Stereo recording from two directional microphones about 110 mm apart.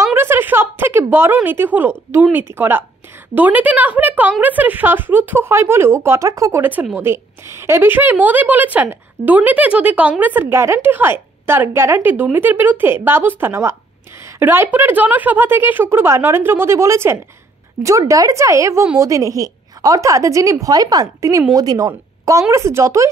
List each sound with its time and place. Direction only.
0.0 s a woman's voice: 20° right (ahead or behind)
6.6 s a woman's voice: 15° right (ahead or behind)